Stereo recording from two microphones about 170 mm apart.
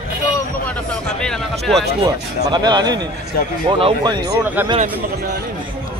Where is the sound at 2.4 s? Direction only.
25° right (ahead or behind).